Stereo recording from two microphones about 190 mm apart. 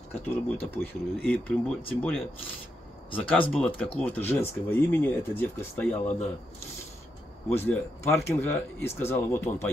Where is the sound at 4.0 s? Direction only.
10° left (ahead or behind).